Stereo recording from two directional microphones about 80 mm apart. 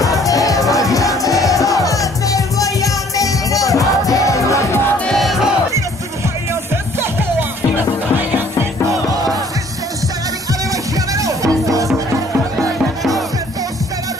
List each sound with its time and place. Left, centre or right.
0.2 s music: left
5.1 s crowd: centre
7.0 s music: right
11.1 s music: right
12.5 s music: centre